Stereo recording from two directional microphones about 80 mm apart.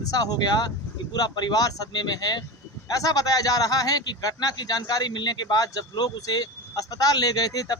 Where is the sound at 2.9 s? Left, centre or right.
Left.